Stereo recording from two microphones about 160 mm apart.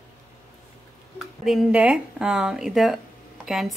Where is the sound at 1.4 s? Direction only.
Centre (ahead or behind).